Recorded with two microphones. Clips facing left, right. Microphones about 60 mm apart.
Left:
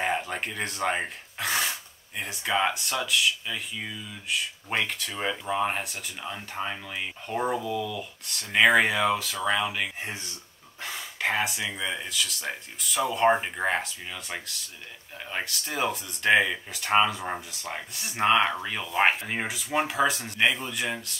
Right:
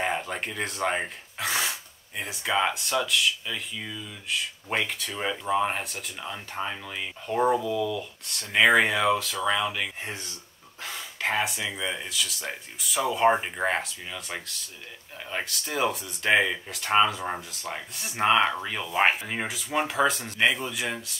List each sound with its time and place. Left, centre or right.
0.0 s speech: centre
19.2 s speech: centre